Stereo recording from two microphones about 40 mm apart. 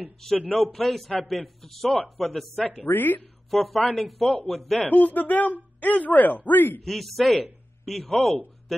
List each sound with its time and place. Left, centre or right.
0.7 s speech: centre
2.9 s speech: left
3.4 s speech: centre
4.7 s speech: left
6.8 s speech: centre